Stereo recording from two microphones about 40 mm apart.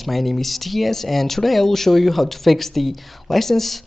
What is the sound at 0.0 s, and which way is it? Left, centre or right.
Speech, centre.